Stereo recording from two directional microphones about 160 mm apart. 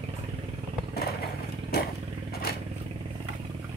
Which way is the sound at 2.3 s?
75° left (ahead or behind).